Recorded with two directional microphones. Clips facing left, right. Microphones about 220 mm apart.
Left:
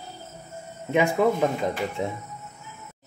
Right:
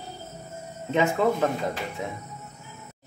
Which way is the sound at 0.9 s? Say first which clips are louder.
Left 2 dB; 15° left (ahead or behind).